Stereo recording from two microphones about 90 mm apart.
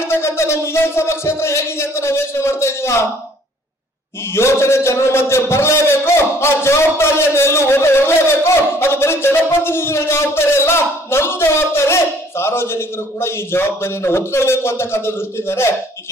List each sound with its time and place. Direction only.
0.1 s music: 30° left (ahead or behind)
4.3 s a man's voice: 30° left (ahead or behind)